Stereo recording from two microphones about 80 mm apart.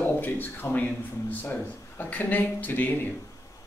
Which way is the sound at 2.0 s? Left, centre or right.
Left.